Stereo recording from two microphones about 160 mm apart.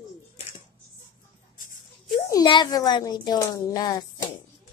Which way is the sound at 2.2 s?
25° left (ahead or behind).